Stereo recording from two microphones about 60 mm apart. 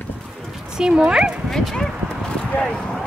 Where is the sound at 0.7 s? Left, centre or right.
Centre.